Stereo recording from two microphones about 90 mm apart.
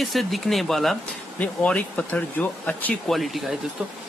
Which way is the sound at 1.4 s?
15° left (ahead or behind).